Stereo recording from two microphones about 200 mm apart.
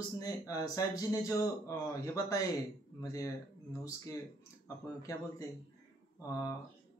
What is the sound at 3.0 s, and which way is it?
Speech, 15° left (ahead or behind).